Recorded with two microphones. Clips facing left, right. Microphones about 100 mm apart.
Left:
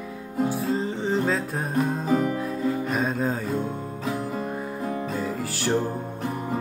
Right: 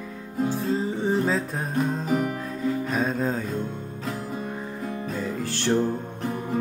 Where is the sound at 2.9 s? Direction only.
Centre (ahead or behind).